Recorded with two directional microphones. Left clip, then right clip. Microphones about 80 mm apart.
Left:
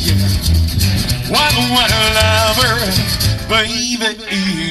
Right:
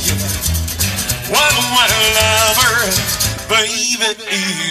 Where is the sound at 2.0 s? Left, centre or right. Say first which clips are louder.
Even; right.